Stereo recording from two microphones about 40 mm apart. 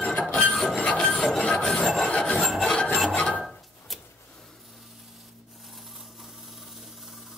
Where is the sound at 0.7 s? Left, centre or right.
Left.